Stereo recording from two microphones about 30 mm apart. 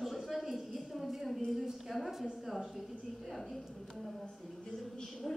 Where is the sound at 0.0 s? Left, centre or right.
Centre.